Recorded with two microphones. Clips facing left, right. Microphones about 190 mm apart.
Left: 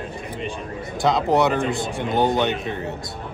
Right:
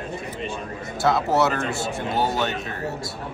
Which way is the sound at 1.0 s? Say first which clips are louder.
Left 2 dB; 15° left (ahead or behind).